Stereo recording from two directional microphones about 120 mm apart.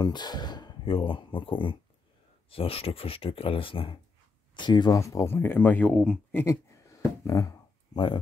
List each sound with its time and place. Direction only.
0.0 s speech: 35° left (ahead or behind)
4.6 s speech: 35° left (ahead or behind); by 6.4 s 10° left (ahead or behind)
6.4 s a sound: 25° left (ahead or behind)